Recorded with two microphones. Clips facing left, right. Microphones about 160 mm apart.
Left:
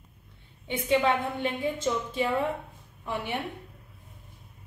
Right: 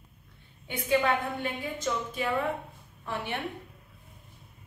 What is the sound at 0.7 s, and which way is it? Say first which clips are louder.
A woman's voice: left 2 dB; 25° left (ahead or behind).